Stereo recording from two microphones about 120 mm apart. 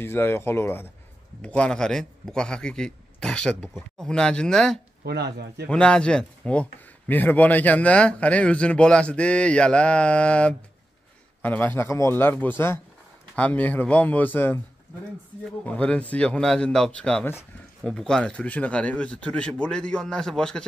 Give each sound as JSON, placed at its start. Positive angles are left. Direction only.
{"t": 0.0, "sound": "a man's voice", "side_deg": 20}
{"t": 15.6, "sound": "speech", "side_deg": 10}